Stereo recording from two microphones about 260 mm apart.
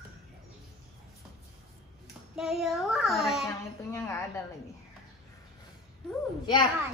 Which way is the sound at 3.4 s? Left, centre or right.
Centre.